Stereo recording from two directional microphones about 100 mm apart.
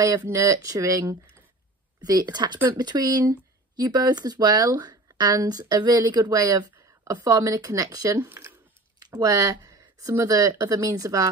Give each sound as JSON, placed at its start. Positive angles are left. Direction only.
{"t": 0.0, "sound": "speech", "side_deg": -35}
{"t": 2.0, "sound": "speech", "side_deg": -40}
{"t": 8.3, "sound": "squish", "side_deg": -30}
{"t": 9.1, "sound": "speech", "side_deg": -35}